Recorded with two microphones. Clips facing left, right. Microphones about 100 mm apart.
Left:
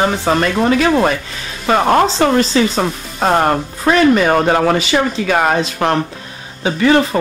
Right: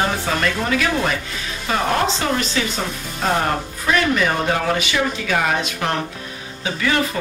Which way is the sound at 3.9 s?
50° left (ahead or behind).